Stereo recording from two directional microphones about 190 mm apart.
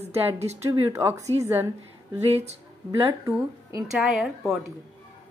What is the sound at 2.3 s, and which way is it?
Speech, 35° right (ahead or behind).